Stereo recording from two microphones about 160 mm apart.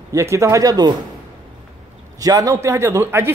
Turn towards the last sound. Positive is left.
turn(degrees=-15)  # may be behind; listen again after turning